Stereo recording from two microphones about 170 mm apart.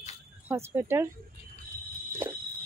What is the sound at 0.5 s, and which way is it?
Speech, 15° right (ahead or behind).